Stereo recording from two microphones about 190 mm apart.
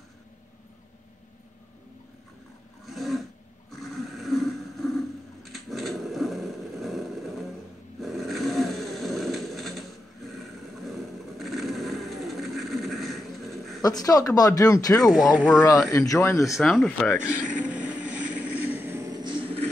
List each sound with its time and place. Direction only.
2.8 s filing: centre (ahead or behind)
3.7 s a sound: centre (ahead or behind)
13.8 s speech: 20° left (ahead or behind)
15.0 s speech: centre (ahead or behind)
15.9 s speech: 15° left (ahead or behind)
16.5 s speech: centre (ahead or behind)
17.5 s vehicle: 5° right (ahead or behind); by 19.7 s 30° right (ahead or behind)